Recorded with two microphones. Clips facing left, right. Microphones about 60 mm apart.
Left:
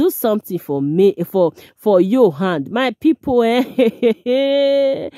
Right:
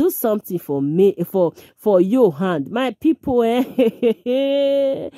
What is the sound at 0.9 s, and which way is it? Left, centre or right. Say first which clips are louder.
Speech: left 2 dB; left.